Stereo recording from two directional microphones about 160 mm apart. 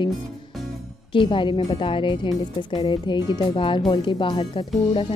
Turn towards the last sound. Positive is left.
turn(degrees=30)  # may be behind; listen again after turning